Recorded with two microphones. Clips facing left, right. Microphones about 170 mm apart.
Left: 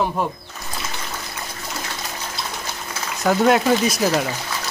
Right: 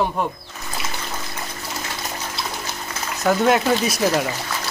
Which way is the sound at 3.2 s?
Centre (ahead or behind).